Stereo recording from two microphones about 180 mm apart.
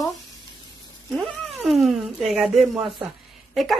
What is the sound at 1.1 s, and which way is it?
Speech, centre (ahead or behind).